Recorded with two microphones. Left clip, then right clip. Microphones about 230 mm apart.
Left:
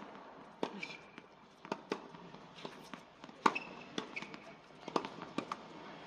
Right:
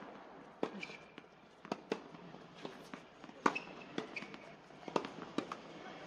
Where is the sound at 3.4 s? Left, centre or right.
Left.